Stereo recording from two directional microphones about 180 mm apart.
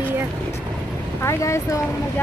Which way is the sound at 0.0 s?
10° right (ahead or behind).